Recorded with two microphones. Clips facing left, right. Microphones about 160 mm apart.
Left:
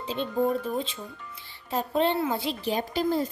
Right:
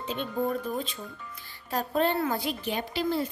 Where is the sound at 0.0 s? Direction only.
30° left (ahead or behind).